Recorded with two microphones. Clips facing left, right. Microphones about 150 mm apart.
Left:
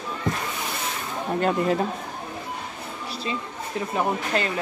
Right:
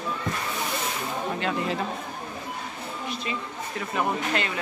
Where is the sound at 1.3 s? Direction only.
45° left (ahead or behind).